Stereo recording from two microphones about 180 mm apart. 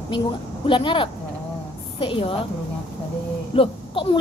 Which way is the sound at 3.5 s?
30° left (ahead or behind).